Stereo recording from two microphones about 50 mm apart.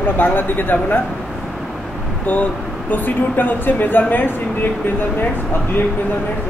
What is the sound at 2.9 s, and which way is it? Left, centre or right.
A man's voice, left.